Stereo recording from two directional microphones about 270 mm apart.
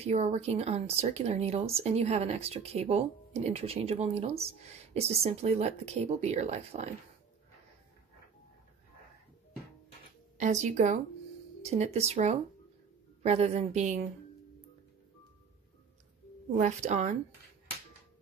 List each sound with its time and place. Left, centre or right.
0.0 s speech: right
10.3 s speech: right
16.5 s speech: right